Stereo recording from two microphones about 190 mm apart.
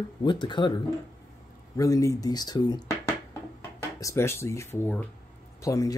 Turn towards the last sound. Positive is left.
turn(degrees=15)  # may be behind; listen again after turning